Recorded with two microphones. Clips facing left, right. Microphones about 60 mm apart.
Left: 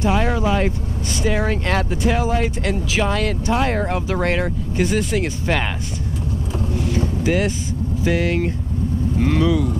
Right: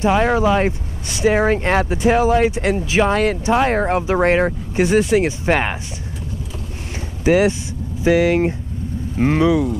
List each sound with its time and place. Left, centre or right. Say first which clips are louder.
0.0 s speech: right 4 dB; right
7.2 s speech: right 9 dB; right